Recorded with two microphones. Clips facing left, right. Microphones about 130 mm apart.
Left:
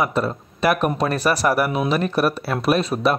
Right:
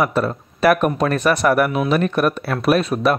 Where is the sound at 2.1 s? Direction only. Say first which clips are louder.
Right 1 dB; 5° left (ahead or behind).